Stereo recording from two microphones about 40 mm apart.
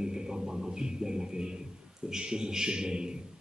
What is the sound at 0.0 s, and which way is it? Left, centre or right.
Music, centre.